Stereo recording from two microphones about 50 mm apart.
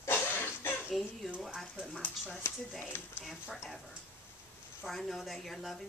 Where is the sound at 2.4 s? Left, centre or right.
Left.